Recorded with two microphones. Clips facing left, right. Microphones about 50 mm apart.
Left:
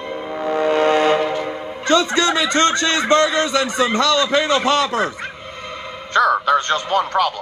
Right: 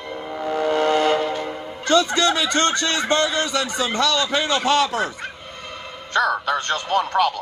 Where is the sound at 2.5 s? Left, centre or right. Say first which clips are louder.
Left 4 dB; left.